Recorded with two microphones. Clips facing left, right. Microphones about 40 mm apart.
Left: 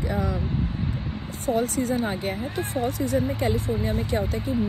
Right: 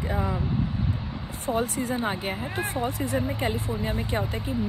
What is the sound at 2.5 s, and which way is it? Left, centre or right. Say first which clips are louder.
Speech: left 1 dB; right.